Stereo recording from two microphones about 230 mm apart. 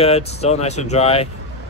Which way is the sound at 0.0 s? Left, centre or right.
Left.